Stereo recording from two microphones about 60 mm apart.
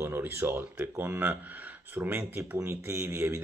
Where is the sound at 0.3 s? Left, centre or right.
Right.